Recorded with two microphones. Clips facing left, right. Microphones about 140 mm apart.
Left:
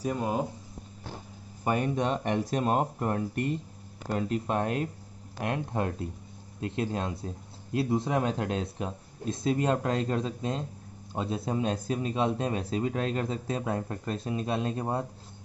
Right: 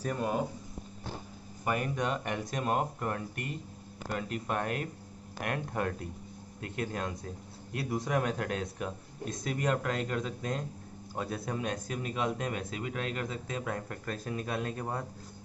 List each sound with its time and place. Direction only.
0.0 s speech: 15° left (ahead or behind)
1.6 s speech: 30° left (ahead or behind)